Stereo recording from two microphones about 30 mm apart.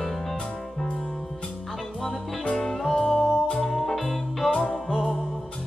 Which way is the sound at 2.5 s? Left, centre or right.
Left.